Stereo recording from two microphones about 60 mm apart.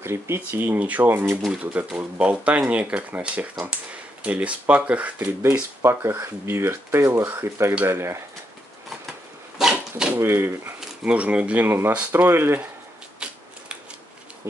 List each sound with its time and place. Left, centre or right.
0.0 s speech: right
0.7 s speech: right
1.5 s speech: right
5.2 s speech: right
9.6 s dog: centre
10.1 s speech: right
10.8 s speech: right
11.6 s speech: right
13.2 s shuffling cards: centre
14.4 s speech: right